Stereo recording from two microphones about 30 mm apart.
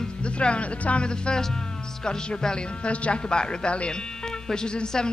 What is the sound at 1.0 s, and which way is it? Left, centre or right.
Speech, left.